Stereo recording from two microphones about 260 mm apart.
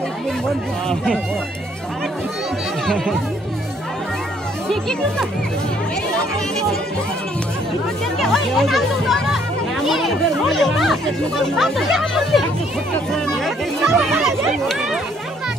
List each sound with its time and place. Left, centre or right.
0.8 s speech: centre
8.2 s speech: centre
13.7 s speech: centre